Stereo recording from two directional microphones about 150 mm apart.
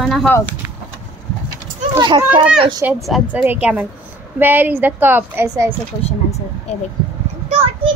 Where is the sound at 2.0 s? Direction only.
25° right (ahead or behind).